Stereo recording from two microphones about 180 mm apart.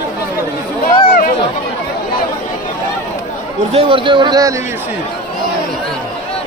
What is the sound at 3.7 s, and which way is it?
Speech, 30° right (ahead or behind).